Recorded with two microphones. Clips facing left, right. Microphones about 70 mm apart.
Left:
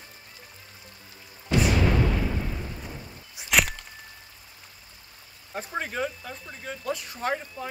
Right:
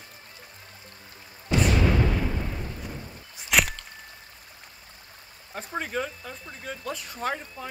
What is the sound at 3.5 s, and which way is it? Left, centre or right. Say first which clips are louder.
Crack: even; centre.